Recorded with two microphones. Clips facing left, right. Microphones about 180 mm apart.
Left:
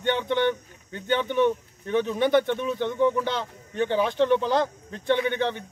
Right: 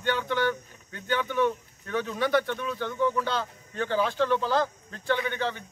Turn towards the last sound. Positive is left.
turn(degrees=20)  # may be behind; listen again after turning